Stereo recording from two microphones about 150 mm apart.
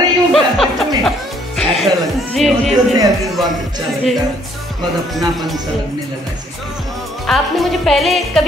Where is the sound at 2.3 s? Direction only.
Centre (ahead or behind).